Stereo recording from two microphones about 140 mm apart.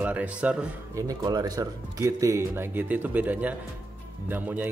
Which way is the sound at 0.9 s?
25° right (ahead or behind).